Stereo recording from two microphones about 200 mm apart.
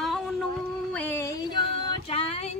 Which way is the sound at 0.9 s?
10° left (ahead or behind).